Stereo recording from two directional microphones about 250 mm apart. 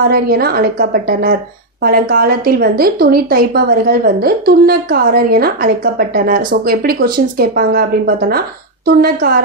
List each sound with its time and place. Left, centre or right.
0.1 s a woman's voice: right